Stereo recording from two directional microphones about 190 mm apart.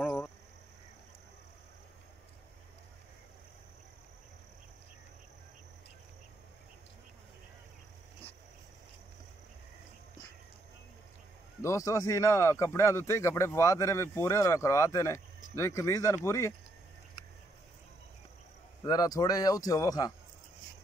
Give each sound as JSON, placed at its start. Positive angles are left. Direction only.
{"t": 0.0, "sound": "a sound", "side_deg": 15}
{"t": 11.6, "sound": "speech", "side_deg": 15}
{"t": 18.9, "sound": "speech", "side_deg": 20}